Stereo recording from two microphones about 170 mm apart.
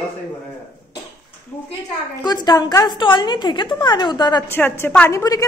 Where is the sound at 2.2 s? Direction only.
25° left (ahead or behind).